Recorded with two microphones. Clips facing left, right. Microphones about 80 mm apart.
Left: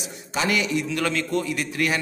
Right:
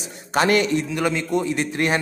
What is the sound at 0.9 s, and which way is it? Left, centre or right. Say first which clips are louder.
A man's voice: right 2 dB; centre.